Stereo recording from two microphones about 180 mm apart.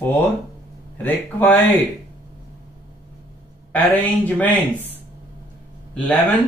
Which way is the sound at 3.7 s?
10° left (ahead or behind).